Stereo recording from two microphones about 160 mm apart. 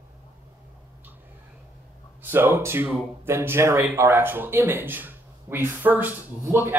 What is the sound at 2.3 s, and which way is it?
A man's voice, 15° right (ahead or behind).